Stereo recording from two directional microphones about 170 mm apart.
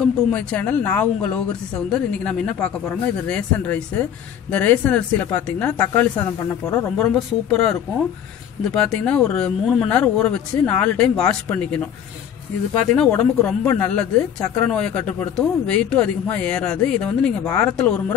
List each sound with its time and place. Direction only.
0.0 s speech: 5° left (ahead or behind)
8.7 s speech: 5° left (ahead or behind)
12.9 s speech: 5° left (ahead or behind)